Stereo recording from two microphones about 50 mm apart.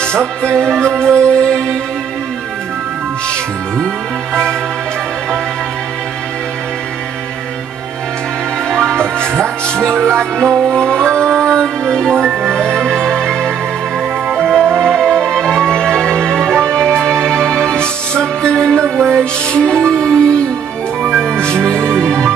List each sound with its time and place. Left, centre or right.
0.0 s music: centre
4.3 s music: centre
8.6 s music: centre
8.9 s music: right
9.4 s music: centre
14.2 s music: centre
14.9 s music: centre
18.8 s music: right
19.1 s music: centre